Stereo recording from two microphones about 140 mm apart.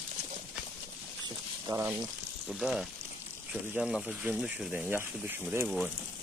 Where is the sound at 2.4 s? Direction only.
Centre (ahead or behind).